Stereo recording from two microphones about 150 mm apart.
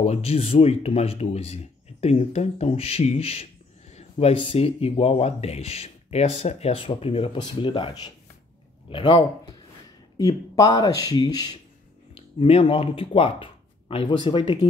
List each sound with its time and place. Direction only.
0.0 s speech: 45° left (ahead or behind); by 11.5 s 25° left (ahead or behind)
12.1 s speech: 40° left (ahead or behind)